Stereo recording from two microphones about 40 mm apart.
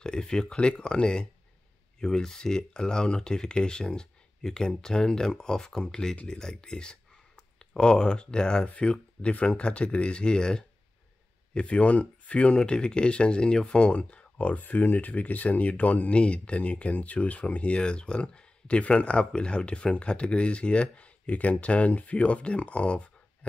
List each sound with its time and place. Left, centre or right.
0.0 s speech: centre
9.2 s speech: left